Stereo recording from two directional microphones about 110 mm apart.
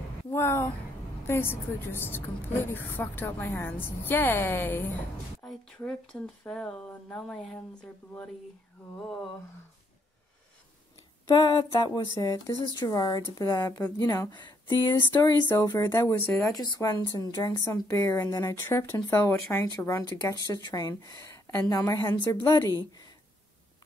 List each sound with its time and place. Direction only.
0.3 s a woman's voice: 25° left (ahead or behind)
5.4 s a sound: 5° left (ahead or behind)
5.9 s speech: 5° left (ahead or behind)
11.3 s a woman's voice: 40° left (ahead or behind)
16.5 s a woman's voice: 35° left (ahead or behind)
22.4 s a woman's voice: 25° left (ahead or behind)
22.8 s speech: 40° left (ahead or behind)